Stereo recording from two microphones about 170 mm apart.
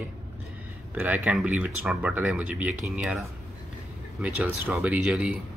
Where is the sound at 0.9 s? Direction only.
10° right (ahead or behind).